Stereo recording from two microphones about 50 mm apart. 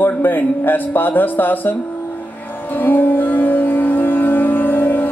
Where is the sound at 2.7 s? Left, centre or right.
Left.